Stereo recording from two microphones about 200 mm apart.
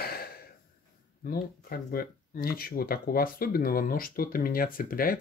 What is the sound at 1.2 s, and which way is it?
Speech, 50° left (ahead or behind).